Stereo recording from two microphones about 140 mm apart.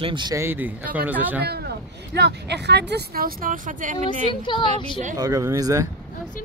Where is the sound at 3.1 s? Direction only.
90° right; by 4.3 s 60° right (ahead or behind).